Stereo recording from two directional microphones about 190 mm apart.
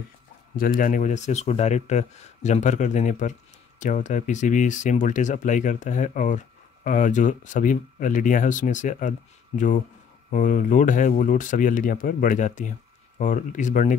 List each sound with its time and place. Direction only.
0.6 s speech: 45° left (ahead or behind)
10.3 s speech: 40° left (ahead or behind)